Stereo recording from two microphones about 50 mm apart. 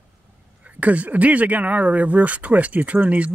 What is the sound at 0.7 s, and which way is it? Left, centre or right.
Speech, right.